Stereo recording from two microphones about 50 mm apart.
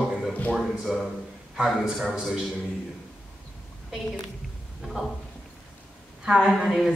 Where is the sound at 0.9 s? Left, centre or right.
Centre.